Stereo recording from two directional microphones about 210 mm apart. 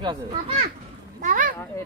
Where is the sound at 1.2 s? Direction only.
40° right (ahead or behind).